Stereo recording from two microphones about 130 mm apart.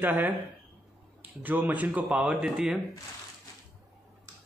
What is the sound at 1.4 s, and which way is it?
Speech, 15° right (ahead or behind).